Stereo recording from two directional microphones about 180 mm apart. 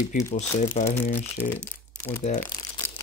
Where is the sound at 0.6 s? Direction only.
35° left (ahead or behind).